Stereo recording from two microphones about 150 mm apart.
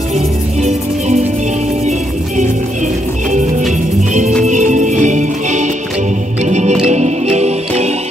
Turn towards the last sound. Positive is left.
turn(degrees=-45)  # may be behind; listen again after turning